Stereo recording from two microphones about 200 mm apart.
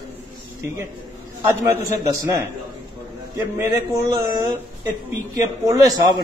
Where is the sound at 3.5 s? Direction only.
15° right (ahead or behind).